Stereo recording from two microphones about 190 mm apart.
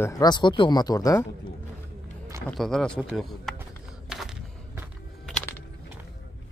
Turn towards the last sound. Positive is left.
turn(degrees=5)  # may be behind; listen again after turning